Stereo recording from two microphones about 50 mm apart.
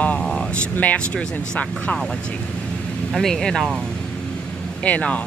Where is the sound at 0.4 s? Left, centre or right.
Left.